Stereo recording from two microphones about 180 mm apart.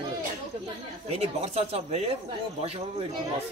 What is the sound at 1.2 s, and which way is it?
Speech, 35° right (ahead or behind).